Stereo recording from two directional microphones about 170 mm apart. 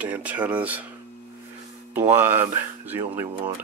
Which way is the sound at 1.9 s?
15° right (ahead or behind).